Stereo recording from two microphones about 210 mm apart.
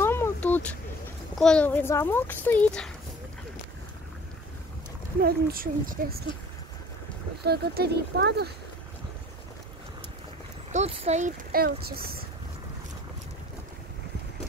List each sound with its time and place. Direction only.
0.0 s a sound: 10° left (ahead or behind)
1.4 s a child's voice: 5° left (ahead or behind)
5.2 s speech: 45° right (ahead or behind)
7.4 s speech: 50° right (ahead or behind)
10.7 s speech: 30° right (ahead or behind)